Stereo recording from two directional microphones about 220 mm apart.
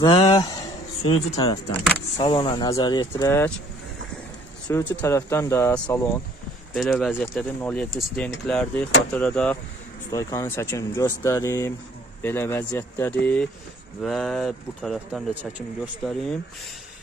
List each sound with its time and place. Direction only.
0.0 s speech: 20° left (ahead or behind)
4.6 s speech: 10° left (ahead or behind)
6.7 s speech: centre (ahead or behind)